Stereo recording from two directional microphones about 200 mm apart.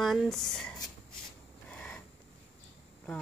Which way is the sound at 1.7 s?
5° left (ahead or behind).